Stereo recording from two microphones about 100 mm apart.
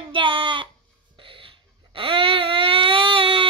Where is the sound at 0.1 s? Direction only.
55° right (ahead or behind).